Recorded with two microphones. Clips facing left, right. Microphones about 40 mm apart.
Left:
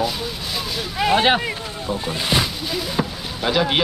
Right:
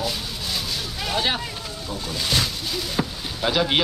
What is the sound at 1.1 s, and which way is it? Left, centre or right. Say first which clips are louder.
Speech: left 7 dB; left.